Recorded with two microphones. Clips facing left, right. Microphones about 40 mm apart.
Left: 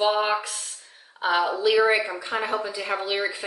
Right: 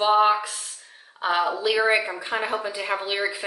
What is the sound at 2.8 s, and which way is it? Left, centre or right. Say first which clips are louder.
Speech: right 1 dB; centre.